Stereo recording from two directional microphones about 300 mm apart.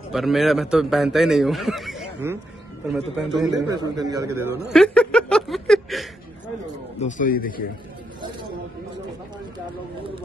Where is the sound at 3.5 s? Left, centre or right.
Centre.